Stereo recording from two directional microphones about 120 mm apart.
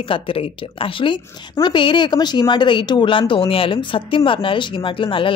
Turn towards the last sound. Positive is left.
turn(degrees=45)  # may be behind; listen again after turning